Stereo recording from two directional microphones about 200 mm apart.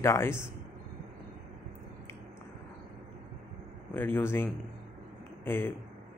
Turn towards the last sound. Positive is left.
turn(degrees=10)  # may be behind; listen again after turning